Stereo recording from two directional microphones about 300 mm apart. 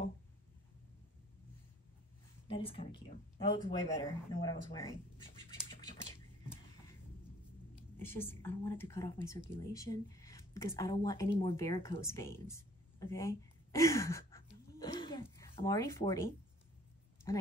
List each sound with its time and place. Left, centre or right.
2.4 s a woman's voice: centre
3.7 s a woman's voice: centre
8.0 s a woman's voice: centre
14.7 s a sound: centre
17.3 s a woman's voice: centre